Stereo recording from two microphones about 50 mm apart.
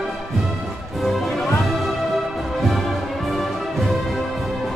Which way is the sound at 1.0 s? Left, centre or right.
Centre.